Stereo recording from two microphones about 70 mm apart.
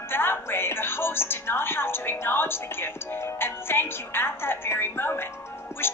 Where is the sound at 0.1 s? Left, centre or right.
Left.